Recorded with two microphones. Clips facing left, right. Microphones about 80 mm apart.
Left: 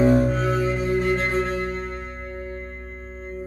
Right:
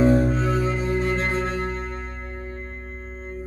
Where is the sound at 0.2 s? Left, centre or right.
Right.